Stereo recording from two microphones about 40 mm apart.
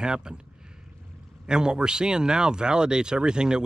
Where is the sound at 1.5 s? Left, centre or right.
Centre.